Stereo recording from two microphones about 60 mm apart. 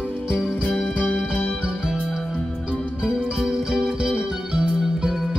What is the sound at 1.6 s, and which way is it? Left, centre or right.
Music, centre.